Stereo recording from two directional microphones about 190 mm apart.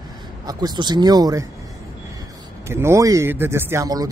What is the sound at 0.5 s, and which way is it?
Speech, 20° right (ahead or behind).